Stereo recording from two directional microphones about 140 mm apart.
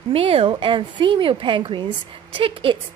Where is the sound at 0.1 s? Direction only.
40° right (ahead or behind).